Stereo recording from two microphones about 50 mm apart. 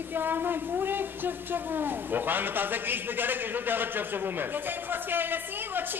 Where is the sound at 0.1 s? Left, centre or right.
Right.